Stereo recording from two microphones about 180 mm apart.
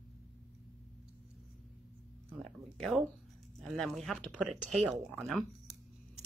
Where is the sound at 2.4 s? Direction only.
Centre (ahead or behind).